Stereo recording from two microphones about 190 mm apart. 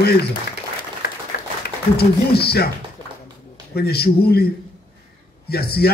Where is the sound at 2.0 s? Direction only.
55° left (ahead or behind).